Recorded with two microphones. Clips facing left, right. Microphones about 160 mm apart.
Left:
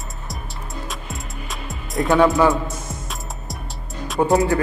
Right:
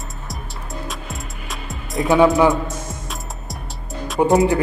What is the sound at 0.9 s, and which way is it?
Music, centre (ahead or behind).